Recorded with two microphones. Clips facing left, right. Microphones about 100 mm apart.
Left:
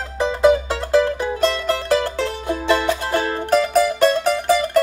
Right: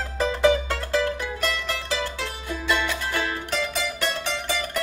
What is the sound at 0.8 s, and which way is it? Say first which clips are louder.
Music: left 9 dB; 35° left (ahead or behind).